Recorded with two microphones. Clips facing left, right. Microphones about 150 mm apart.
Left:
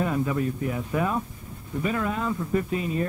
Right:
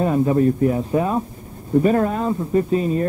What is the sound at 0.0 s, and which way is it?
Speech, 35° right (ahead or behind).